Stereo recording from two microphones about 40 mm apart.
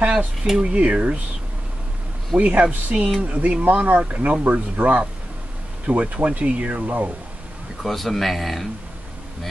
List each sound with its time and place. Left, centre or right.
0.0 s speech: right
2.3 s speech: right
3.6 s speech: right
7.8 s speech: centre